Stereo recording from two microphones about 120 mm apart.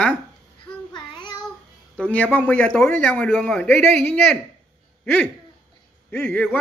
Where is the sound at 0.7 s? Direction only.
35° left (ahead or behind).